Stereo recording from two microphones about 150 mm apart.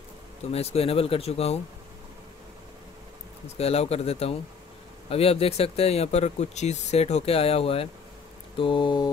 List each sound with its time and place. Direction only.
0.4 s speech: 45° left (ahead or behind)
3.4 s speech: 45° left (ahead or behind)